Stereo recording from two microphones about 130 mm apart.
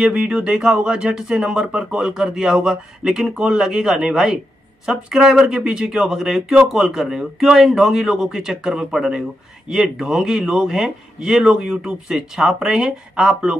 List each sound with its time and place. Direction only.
0.0 s speech: 5° right (ahead or behind)